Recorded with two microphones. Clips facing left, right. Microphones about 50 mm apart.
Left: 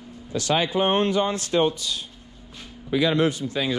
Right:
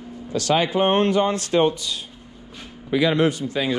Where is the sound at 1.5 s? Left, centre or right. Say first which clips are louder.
Right 2 dB; right.